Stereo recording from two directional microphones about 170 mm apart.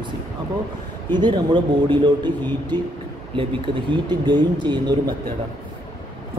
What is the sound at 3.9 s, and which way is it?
A man's voice, 25° right (ahead or behind).